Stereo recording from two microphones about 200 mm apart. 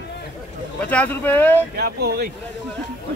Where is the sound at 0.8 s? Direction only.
10° left (ahead or behind).